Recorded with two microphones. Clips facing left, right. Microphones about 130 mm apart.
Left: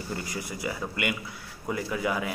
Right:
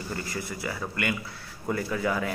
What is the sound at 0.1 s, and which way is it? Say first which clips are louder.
A man's voice: even; 15° left (ahead or behind).